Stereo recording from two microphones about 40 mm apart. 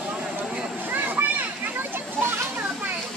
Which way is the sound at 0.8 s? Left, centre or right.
Right.